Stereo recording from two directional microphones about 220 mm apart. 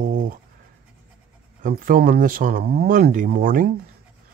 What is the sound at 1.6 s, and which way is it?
Speech, 40° right (ahead or behind).